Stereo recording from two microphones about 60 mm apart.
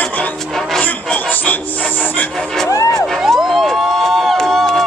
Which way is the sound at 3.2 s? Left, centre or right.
Centre.